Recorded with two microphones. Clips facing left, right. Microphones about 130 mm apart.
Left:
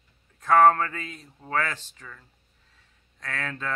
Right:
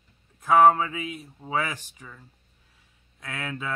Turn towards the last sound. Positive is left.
turn(degrees=-10)  # may be behind; listen again after turning